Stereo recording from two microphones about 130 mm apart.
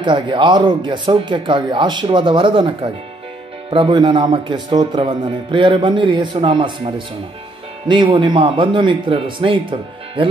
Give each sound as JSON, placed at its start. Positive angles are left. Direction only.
{"t": 0.0, "sound": "a man's voice", "side_deg": -35}
{"t": 7.9, "sound": "a man's voice", "side_deg": -40}